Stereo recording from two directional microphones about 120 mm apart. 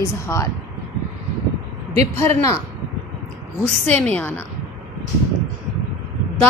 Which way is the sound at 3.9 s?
10° left (ahead or behind).